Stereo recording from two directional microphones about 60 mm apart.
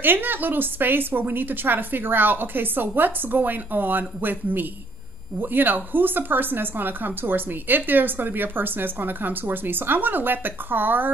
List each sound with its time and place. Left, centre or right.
0.0 s a woman's voice: right